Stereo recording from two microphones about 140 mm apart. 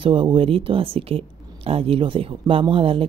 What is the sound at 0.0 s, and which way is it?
Speech, 40° right (ahead or behind).